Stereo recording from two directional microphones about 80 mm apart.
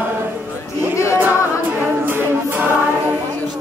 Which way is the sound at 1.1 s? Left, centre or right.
Right.